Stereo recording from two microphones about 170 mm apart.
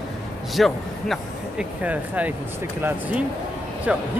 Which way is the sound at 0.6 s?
Centre (ahead or behind).